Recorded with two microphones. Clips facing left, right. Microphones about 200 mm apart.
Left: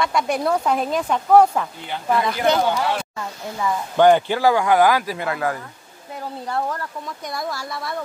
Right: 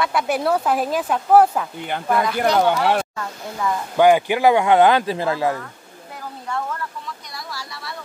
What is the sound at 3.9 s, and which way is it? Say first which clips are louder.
Speech: even; 10° right (ahead or behind).